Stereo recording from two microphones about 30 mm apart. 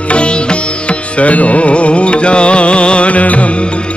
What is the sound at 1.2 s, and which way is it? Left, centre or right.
Music, left.